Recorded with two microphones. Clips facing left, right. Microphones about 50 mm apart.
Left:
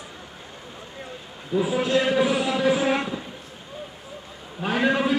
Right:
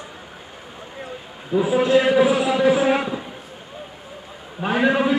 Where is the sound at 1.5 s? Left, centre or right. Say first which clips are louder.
Right 5 dB; centre.